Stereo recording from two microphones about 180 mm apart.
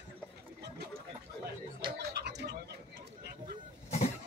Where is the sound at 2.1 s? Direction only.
65° right (ahead or behind).